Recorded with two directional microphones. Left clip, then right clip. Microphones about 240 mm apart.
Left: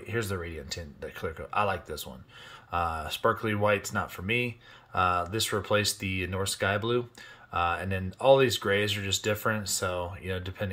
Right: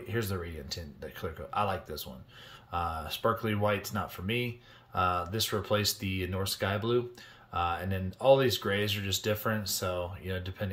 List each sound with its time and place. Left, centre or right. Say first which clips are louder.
0.1 s speech: left 3 dB; centre